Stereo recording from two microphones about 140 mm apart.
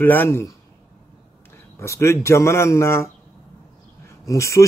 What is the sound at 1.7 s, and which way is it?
Speech, 20° left (ahead or behind).